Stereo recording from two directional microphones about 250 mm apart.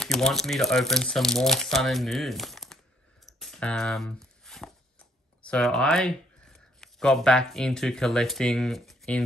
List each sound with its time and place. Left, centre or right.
0.0 s speech: centre
3.3 s a sound: centre
6.8 s speech: centre